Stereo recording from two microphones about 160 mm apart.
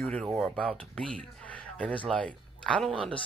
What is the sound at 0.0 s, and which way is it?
Speech, centre (ahead or behind).